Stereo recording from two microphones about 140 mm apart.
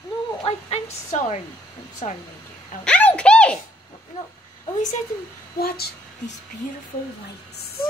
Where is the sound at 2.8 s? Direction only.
10° left (ahead or behind).